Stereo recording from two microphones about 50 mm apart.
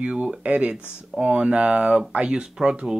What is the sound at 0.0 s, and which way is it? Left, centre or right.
Speech, right.